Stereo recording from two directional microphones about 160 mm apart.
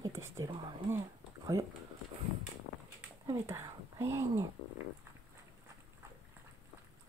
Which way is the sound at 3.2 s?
15° right (ahead or behind).